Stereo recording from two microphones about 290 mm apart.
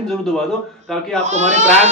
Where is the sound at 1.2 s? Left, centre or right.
Right.